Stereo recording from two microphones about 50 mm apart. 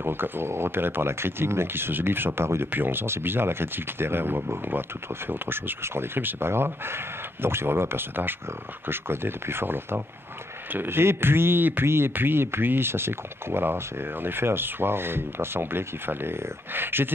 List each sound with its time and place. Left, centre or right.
0.0 s speech: right
2.7 s speech: right
11.8 s speech: right
12.1 s speech: right